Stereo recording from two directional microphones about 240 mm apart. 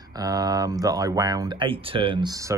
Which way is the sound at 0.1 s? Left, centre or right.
Centre.